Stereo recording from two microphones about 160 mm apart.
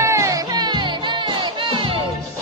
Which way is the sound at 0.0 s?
20° right (ahead or behind).